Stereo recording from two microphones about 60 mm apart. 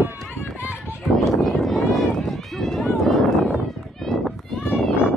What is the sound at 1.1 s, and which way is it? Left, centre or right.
Run, centre.